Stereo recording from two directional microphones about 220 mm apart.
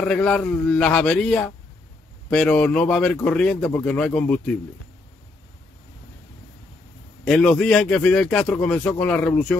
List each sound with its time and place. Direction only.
0.0 s speech: 5° left (ahead or behind)
7.2 s speech: 5° left (ahead or behind)